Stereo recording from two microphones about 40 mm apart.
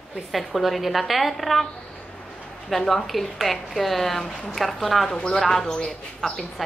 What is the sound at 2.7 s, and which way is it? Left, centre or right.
A woman's voice, centre.